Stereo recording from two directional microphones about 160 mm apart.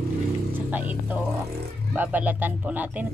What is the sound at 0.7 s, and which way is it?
Speech, 10° right (ahead or behind).